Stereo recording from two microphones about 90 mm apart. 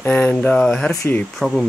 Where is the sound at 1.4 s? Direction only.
5° left (ahead or behind).